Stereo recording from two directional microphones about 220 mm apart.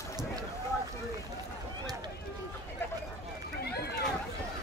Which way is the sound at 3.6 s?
45° left (ahead or behind).